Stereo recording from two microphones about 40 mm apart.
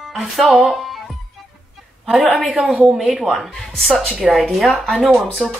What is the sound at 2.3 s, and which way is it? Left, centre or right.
Speech, right.